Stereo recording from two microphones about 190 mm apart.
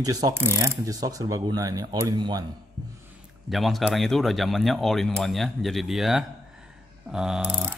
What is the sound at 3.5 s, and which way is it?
Speech, centre (ahead or behind).